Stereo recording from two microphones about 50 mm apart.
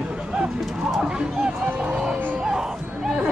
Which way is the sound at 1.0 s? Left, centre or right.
Centre.